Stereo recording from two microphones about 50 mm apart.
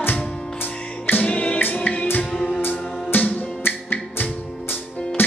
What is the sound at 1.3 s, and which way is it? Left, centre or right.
Choir, centre.